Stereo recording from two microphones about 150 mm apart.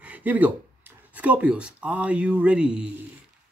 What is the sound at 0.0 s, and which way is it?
Speech, 10° right (ahead or behind).